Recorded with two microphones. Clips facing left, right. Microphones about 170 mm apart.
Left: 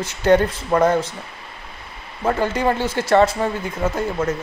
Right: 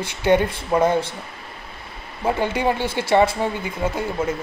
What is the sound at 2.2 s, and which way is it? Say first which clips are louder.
Speech: left 1 dB; 10° right (ahead or behind).